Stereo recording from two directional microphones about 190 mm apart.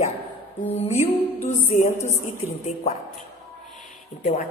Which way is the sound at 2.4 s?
35° left (ahead or behind).